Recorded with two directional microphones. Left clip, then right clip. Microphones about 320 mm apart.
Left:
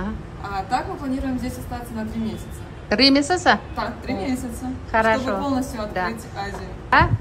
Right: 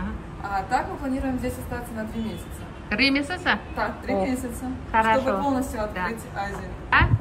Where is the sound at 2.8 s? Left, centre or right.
Centre.